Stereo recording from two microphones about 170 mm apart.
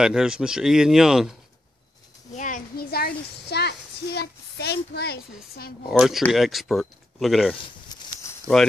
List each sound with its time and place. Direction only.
0.0 s speech: 5° right (ahead or behind)
2.3 s speech: 50° left (ahead or behind); by 5.7 s 70° left (ahead or behind)
5.9 s speech: centre (ahead or behind)
7.6 s a sound: 25° left (ahead or behind)